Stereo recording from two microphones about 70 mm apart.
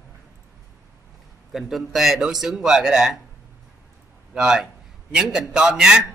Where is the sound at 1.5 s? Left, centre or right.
Centre.